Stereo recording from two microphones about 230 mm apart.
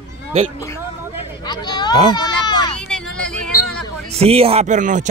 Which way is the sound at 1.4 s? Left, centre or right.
Centre.